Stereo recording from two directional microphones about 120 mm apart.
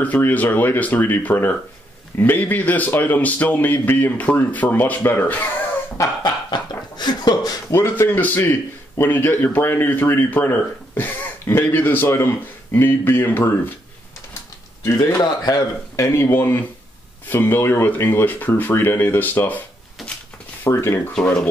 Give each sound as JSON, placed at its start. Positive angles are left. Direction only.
{"t": 0.0, "sound": "speech", "side_deg": 15}
{"t": 5.9, "sound": "a sound", "side_deg": 35}
{"t": 7.7, "sound": "speech", "side_deg": 20}
{"t": 14.9, "sound": "speech", "side_deg": 25}
{"t": 20.6, "sound": "speech", "side_deg": 20}
{"t": 21.1, "sound": "speech", "side_deg": 10}